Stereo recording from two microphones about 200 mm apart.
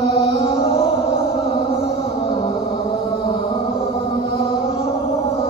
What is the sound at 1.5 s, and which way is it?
Music, 30° left (ahead or behind).